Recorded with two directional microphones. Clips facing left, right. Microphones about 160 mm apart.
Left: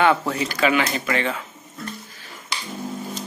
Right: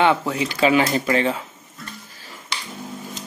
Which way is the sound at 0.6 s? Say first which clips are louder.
Right 4 dB; 30° right (ahead or behind).